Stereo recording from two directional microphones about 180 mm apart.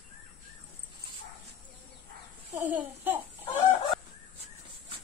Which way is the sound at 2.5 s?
10° right (ahead or behind).